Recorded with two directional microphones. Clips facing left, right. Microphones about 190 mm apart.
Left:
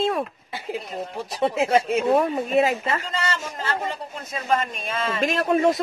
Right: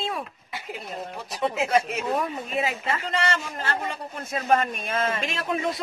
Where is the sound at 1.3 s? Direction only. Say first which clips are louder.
Left 3 dB; 30° left (ahead or behind).